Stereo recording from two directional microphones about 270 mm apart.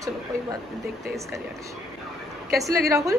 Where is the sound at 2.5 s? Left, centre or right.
Centre.